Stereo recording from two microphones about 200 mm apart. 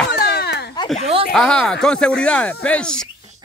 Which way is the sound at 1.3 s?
5° left (ahead or behind).